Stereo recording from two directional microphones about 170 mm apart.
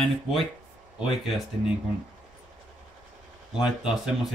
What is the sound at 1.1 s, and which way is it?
Speech, centre (ahead or behind).